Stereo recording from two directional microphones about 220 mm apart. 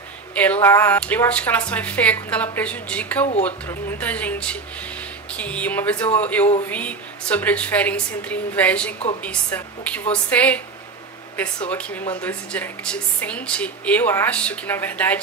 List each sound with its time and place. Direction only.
0.3 s a woman's voice: 5° left (ahead or behind)